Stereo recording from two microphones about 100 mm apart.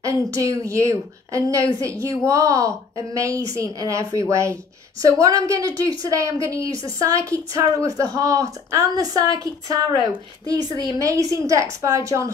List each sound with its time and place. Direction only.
0.0 s a woman's voice: 30° right (ahead or behind)
10.4 s a woman's voice: 40° right (ahead or behind)